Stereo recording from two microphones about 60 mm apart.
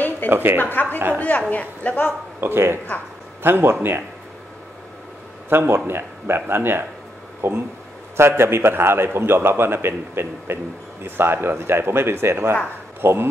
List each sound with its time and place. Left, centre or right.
0.3 s speech: right
0.6 s a woman's voice: left
2.4 s speech: right
5.5 s a man's voice: right